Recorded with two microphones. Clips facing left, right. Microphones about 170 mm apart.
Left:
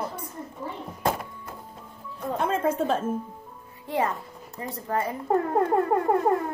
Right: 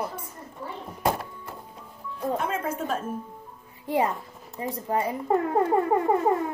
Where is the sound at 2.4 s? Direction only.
30° left (ahead or behind).